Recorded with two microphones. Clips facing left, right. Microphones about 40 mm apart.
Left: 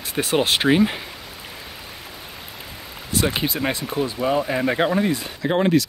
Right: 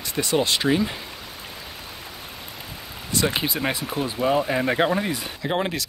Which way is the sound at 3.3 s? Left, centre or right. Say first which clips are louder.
Left 1 dB; centre.